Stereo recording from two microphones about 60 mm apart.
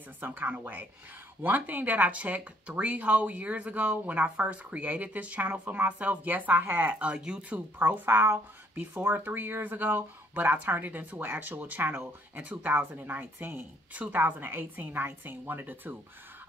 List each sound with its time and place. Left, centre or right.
0.2 s speech: right
7.5 s speech: right